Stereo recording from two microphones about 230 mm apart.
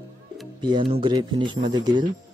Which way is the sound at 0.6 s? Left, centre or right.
Right.